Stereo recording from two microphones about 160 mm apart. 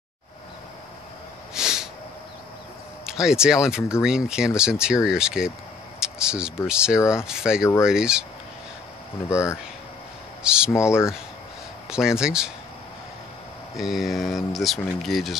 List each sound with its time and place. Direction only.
1.5 s snort: 5° right (ahead or behind)
3.1 s speech: 5° right (ahead or behind)
5.9 s a sound: 5° right (ahead or behind)
6.7 s speech: 5° right (ahead or behind)
9.3 s speech: 20° left (ahead or behind)
10.4 s speech: 5° right (ahead or behind)
10.7 s speech: 15° left (ahead or behind)
11.9 s speech: 5° right (ahead or behind)
13.7 s speech: centre (ahead or behind)